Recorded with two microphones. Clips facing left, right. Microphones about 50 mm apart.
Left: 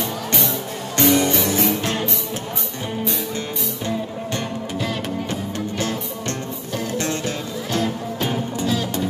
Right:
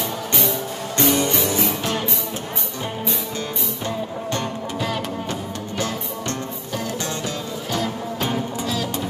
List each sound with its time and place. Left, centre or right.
0.9 s music: left
7.0 s music: left
8.3 s music: centre